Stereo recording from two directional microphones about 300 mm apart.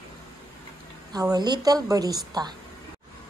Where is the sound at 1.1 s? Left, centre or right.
Centre.